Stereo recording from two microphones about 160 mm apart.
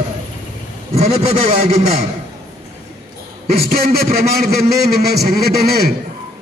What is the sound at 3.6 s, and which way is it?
A man's voice, 70° right (ahead or behind).